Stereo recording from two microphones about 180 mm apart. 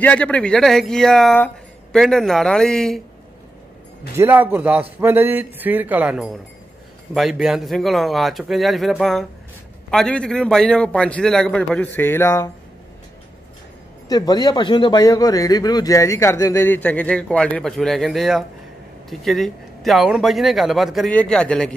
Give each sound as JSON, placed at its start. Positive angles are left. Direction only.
{"t": 0.0, "sound": "speech", "side_deg": 5}
{"t": 4.2, "sound": "a man's voice", "side_deg": -10}
{"t": 14.0, "sound": "speech", "side_deg": 20}